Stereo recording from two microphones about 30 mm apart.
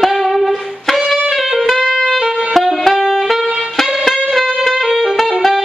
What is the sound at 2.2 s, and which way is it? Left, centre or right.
Music, right.